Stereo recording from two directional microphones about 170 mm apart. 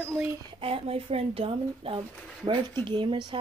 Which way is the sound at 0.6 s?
35° right (ahead or behind).